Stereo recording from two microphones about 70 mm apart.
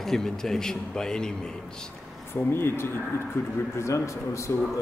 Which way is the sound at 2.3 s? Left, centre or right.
Left.